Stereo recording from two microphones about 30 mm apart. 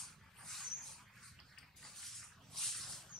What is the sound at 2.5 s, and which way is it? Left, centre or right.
Dog, centre.